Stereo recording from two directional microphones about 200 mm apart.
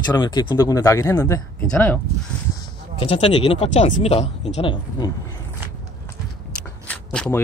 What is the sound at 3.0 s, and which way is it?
Speech, 25° left (ahead or behind).